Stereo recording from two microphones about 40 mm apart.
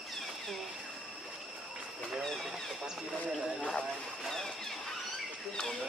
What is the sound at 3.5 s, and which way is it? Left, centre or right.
Speech, left.